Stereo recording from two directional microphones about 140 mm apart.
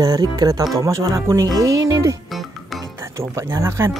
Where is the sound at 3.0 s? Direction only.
20° right (ahead or behind).